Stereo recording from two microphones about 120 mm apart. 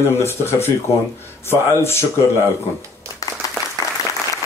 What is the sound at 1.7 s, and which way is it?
Speech, 20° left (ahead or behind).